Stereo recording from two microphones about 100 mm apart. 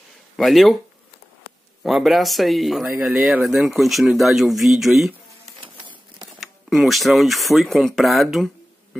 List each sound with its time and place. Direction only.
0.4 s speech: centre (ahead or behind)
1.8 s speech: centre (ahead or behind)
5.6 s printer: 50° right (ahead or behind)
6.4 s speech: centre (ahead or behind)